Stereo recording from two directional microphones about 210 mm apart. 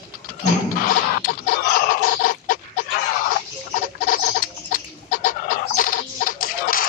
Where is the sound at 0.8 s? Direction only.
40° left (ahead or behind).